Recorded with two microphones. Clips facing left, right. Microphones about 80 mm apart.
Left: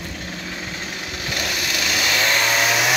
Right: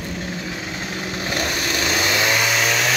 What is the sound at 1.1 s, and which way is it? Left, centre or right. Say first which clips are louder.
Vehicle: right 2 dB; right.